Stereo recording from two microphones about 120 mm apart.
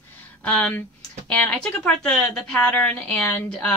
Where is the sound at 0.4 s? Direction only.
10° left (ahead or behind).